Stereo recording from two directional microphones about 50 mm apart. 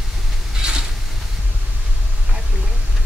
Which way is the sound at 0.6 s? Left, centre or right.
Centre.